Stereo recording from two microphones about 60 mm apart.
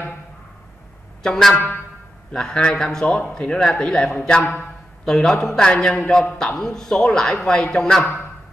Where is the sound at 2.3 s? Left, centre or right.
Centre.